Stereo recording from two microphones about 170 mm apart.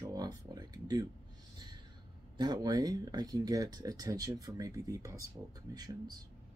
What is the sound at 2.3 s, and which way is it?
Speech, 25° right (ahead or behind).